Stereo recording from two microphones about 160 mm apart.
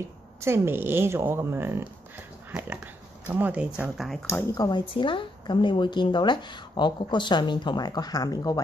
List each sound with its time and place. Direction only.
0.4 s a woman's voice: 15° right (ahead or behind)
3.3 s a woman's voice: 10° right (ahead or behind)
4.3 s speech: 15° left (ahead or behind)
4.6 s a woman's voice: 30° left (ahead or behind)